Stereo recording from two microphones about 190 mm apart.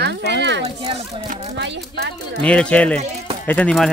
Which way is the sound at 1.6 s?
70° right (ahead or behind).